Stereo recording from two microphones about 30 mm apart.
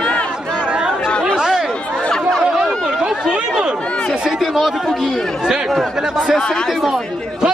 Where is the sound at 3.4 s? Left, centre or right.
Right.